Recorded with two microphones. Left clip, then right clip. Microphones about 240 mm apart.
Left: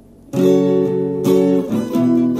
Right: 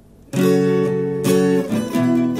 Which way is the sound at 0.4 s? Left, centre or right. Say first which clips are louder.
Left 3 dB; right.